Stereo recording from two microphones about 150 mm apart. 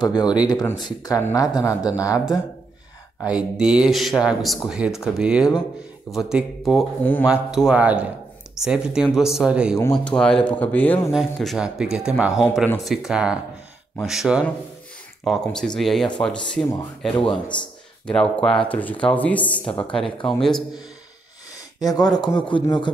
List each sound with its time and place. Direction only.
0.0 s speech: 30° left (ahead or behind)
2.1 s speech: 5° right (ahead or behind)
7.0 s speech: 10° left (ahead or behind)
7.2 s speech: 5° right (ahead or behind)
10.0 s speech: 5° left (ahead or behind)
11.1 s speech: centre (ahead or behind)
21.7 s speech: 25° left (ahead or behind)